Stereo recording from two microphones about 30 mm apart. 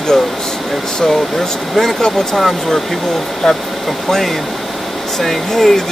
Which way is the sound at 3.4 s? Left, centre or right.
Centre.